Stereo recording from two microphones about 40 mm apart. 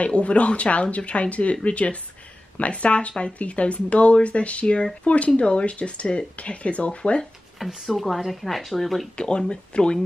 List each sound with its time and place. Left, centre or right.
0.0 s speech: left
7.5 s speech: centre
9.1 s speech: left